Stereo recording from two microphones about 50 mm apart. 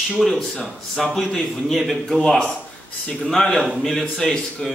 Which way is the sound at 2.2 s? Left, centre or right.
Centre.